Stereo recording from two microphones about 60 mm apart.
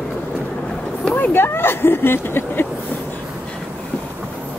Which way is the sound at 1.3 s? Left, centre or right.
Left.